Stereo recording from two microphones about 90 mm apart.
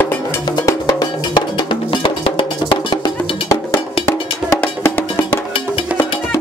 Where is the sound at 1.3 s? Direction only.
65° left (ahead or behind).